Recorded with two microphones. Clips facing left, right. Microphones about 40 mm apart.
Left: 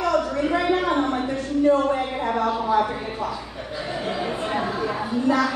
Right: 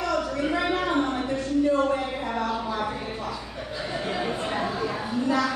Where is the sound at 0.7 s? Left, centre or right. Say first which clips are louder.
Left 3 dB; left.